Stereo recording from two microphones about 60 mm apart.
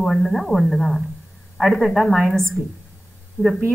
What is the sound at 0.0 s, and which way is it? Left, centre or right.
A woman's voice, centre.